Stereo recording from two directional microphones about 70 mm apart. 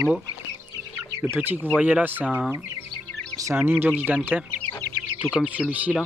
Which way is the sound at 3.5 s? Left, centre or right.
Right.